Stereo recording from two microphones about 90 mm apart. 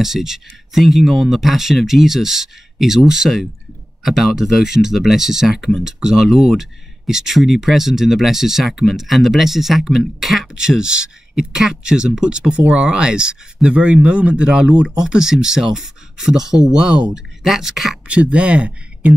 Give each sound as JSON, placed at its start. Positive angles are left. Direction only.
{"t": 0.0, "sound": "speech", "side_deg": -5}